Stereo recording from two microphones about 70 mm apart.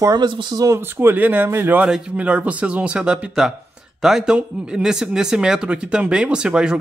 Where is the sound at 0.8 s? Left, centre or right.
Right.